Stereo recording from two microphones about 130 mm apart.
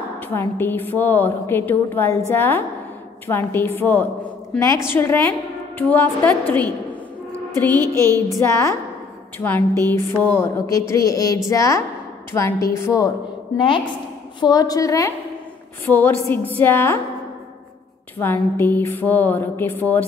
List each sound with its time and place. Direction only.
0.3 s a woman's voice: 15° left (ahead or behind)
7.7 s a sound: 30° right (ahead or behind)
8.4 s a woman's voice: 20° left (ahead or behind)
13.6 s a woman's voice: 40° left (ahead or behind)
15.8 s a woman's voice: 15° left (ahead or behind)
18.2 s a woman's voice: 15° left (ahead or behind)